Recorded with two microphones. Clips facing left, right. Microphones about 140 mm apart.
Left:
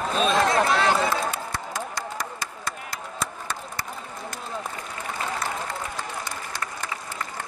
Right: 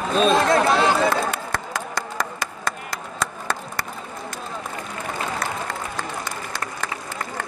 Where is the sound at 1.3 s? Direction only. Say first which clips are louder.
Right 3 dB; 70° right (ahead or behind).